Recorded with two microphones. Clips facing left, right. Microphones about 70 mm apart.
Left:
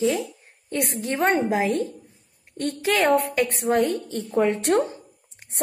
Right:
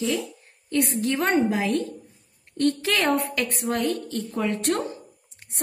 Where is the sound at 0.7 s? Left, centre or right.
Left.